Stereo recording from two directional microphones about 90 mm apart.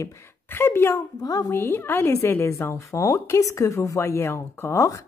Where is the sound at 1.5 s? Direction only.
25° left (ahead or behind).